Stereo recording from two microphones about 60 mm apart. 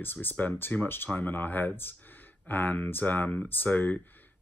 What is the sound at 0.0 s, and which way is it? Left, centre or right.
Speech, left.